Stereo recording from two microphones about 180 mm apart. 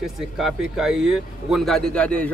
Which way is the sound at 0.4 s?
Centre (ahead or behind).